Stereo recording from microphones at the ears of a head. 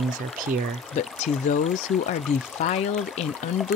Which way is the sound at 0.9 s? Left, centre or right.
Left.